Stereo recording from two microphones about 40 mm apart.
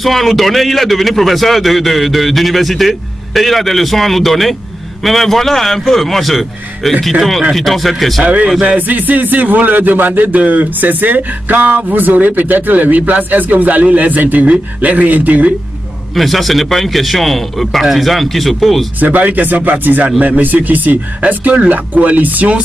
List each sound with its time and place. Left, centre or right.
0.0 s a man's voice: centre
8.2 s a man's voice: right
14.4 s speech: right
16.2 s a man's voice: centre
18.9 s a man's voice: right